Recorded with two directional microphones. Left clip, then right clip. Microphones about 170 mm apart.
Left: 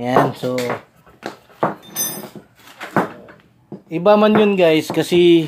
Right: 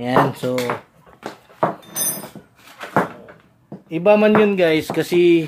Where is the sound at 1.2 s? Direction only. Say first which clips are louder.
Left 2 dB; 15° left (ahead or behind).